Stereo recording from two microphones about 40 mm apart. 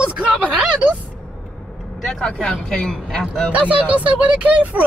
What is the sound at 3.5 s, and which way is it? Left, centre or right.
Speech, right.